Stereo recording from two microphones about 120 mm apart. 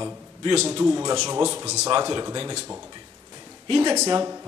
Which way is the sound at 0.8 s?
35° right (ahead or behind).